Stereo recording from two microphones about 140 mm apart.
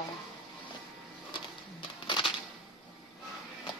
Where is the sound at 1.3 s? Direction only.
35° left (ahead or behind).